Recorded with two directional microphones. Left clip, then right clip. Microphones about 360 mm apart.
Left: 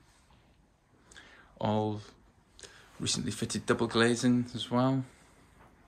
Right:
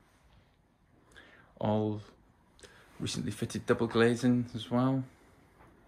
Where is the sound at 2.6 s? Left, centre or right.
Centre.